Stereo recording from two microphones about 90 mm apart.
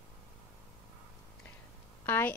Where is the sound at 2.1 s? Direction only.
25° left (ahead or behind).